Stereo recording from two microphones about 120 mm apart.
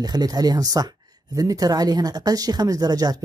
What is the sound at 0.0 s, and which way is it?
Speech, 35° right (ahead or behind).